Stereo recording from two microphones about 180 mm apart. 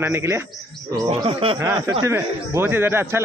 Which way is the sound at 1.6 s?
15° right (ahead or behind).